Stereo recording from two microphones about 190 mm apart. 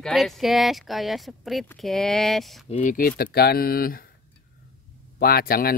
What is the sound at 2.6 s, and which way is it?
Speech, 40° left (ahead or behind).